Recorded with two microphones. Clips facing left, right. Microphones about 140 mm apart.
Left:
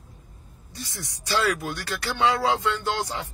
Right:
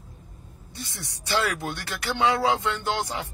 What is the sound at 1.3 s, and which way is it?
Speech, 20° right (ahead or behind).